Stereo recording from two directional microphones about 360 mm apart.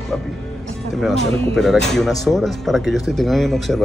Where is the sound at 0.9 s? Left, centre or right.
Centre.